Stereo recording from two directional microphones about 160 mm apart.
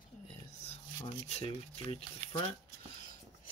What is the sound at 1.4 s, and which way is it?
Speech, 40° left (ahead or behind).